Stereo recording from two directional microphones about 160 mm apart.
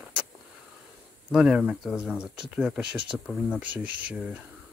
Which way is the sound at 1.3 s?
5° right (ahead or behind).